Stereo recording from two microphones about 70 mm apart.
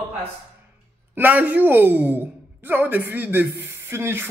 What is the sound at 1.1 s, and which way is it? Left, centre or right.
A woman's voice, right.